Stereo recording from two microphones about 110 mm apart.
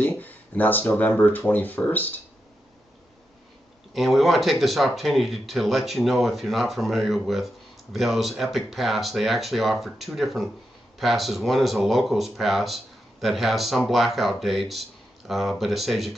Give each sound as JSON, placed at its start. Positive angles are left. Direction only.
{"t": 0.0, "sound": "speech", "side_deg": 15}
{"t": 3.9, "sound": "speech", "side_deg": 0}